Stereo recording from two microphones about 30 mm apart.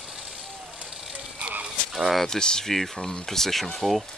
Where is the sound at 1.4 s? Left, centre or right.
Right.